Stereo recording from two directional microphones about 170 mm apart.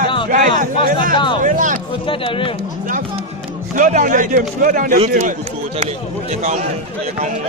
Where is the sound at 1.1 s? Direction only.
30° left (ahead or behind).